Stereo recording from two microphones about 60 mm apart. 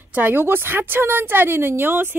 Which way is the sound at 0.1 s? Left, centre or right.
Right.